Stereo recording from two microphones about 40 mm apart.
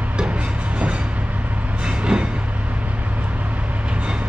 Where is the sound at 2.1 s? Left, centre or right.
Right.